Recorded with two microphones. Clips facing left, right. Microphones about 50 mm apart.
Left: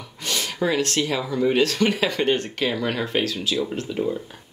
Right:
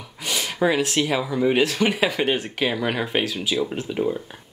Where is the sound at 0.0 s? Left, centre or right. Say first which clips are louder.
Right 1 dB; centre.